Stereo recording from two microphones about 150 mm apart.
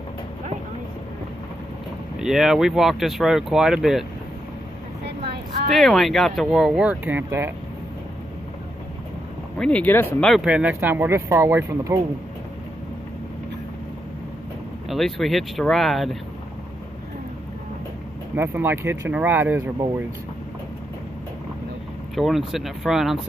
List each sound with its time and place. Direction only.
2.1 s speech: 5° right (ahead or behind)
5.7 s speech: centre (ahead or behind); by 7.5 s 15° right (ahead or behind)
9.6 s speech: 10° left (ahead or behind)
10.3 s speech: 5° right (ahead or behind)
14.9 s speech: centre (ahead or behind)
18.3 s speech: 15° right (ahead or behind)
22.1 s speech: centre (ahead or behind)